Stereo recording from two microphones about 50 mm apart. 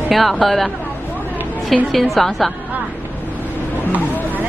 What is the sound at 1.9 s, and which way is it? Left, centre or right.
Speech, centre.